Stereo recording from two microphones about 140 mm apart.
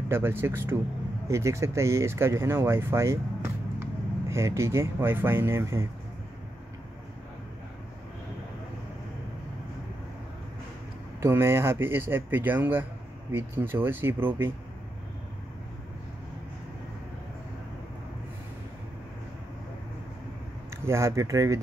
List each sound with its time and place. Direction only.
0.1 s speech: 15° right (ahead or behind)
11.1 s speech: 20° right (ahead or behind)
20.8 s speech: 20° right (ahead or behind)